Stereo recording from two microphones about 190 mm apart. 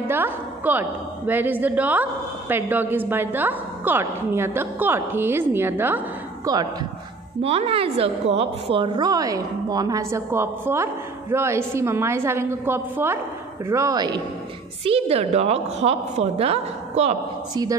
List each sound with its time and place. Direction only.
0.0 s a woman's voice: 10° right (ahead or behind)
7.4 s a woman's voice: 30° right (ahead or behind)
14.9 s a woman's voice: 30° right (ahead or behind)